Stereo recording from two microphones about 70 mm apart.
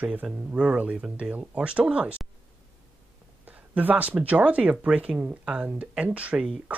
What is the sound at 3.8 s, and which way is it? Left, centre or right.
Speech, right.